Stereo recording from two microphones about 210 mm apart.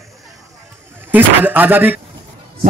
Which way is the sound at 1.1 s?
10° right (ahead or behind).